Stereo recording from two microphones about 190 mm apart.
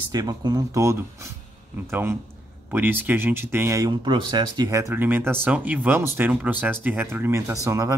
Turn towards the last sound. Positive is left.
turn(degrees=-15)  # may be behind; listen again after turning